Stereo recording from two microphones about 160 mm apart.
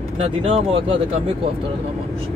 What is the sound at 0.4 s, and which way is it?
Speech, 35° right (ahead or behind).